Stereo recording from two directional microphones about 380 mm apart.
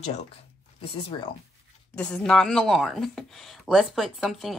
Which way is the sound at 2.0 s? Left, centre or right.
Centre.